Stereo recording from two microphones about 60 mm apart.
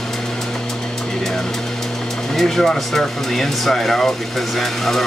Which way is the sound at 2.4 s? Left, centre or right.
Centre.